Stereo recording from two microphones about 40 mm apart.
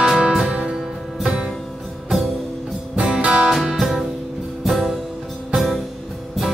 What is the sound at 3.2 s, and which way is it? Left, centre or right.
Music, right.